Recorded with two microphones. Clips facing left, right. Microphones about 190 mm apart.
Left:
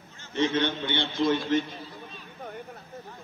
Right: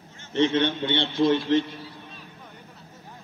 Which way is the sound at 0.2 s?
25° right (ahead or behind).